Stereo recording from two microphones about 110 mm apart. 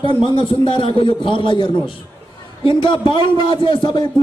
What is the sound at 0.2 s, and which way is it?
A man's voice, 50° left (ahead or behind).